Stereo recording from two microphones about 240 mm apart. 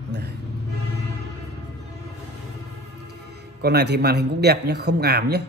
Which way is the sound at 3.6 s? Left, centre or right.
Right.